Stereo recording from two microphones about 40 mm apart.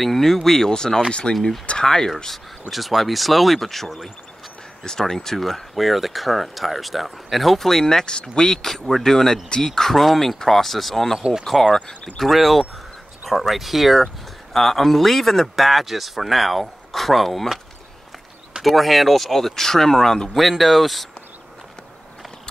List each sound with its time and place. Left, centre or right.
0.0 s speech: centre
2.7 s speech: centre
8.6 s speech: centre
11.1 s speech: centre
11.4 s speech: centre
14.5 s speech: centre
18.6 s speech: centre
20.3 s speech: centre